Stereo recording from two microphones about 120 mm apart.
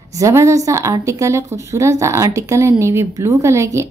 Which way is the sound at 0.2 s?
25° right (ahead or behind).